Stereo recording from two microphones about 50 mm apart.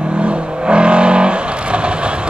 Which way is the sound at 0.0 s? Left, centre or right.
Right.